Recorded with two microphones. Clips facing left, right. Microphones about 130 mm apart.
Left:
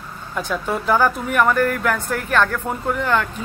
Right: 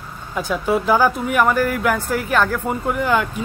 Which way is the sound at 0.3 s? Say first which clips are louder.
Right 4 dB; 5° right (ahead or behind).